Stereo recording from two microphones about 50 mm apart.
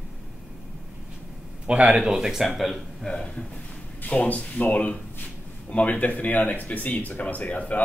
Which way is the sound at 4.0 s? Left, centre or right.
Left.